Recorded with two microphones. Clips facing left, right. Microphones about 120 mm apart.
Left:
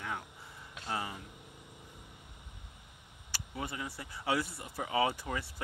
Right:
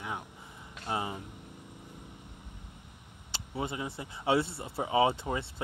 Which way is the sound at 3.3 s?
20° right (ahead or behind).